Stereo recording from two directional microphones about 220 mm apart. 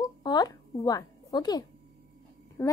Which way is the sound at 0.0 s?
20° left (ahead or behind).